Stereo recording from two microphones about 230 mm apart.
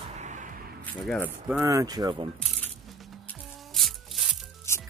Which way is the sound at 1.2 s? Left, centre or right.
Centre.